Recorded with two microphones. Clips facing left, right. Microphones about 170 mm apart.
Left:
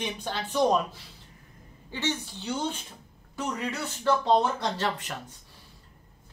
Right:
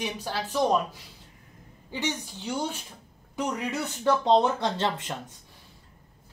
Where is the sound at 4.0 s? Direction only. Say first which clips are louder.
Right 2 dB; 20° right (ahead or behind).